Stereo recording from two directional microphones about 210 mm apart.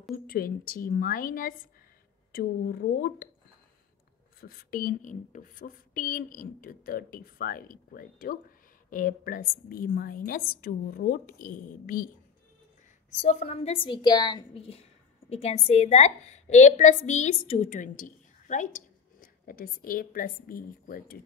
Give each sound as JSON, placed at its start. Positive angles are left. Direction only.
{"t": 0.1, "sound": "speech", "side_deg": 45}
{"t": 4.4, "sound": "speech", "side_deg": 45}
{"t": 13.2, "sound": "a woman's voice", "side_deg": 35}